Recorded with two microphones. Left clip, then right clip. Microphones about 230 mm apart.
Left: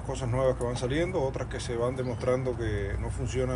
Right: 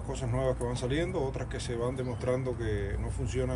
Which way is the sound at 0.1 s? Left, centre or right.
Centre.